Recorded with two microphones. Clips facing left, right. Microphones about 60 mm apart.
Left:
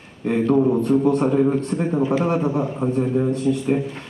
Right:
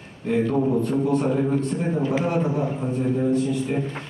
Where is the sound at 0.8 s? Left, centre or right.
Left.